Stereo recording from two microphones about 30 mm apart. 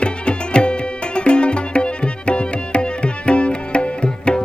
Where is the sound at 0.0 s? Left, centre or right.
Left.